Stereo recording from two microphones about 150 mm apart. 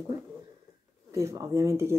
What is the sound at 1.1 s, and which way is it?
Speech, 20° right (ahead or behind).